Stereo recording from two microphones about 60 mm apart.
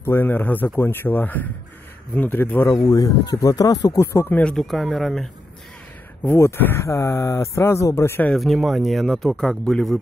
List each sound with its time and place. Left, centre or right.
0.0 s speech: left
2.8 s speech: left
4.0 s speech: left
4.6 s speech: centre
6.3 s speech: left
8.4 s speech: centre